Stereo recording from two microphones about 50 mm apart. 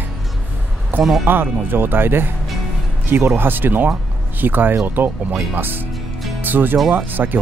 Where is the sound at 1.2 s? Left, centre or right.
Right.